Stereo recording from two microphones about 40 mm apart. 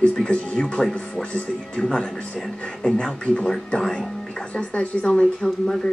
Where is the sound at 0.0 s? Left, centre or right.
Centre.